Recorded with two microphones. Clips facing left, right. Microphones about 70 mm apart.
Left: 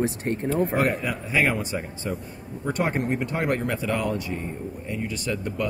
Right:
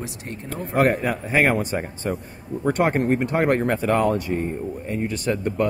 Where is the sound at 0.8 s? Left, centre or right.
Right.